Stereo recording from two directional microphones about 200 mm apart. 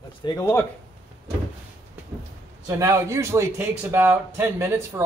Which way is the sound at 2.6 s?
15° right (ahead or behind).